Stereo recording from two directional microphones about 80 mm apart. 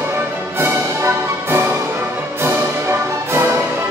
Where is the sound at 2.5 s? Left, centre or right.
Right.